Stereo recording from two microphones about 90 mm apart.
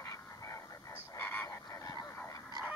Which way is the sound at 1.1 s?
20° left (ahead or behind).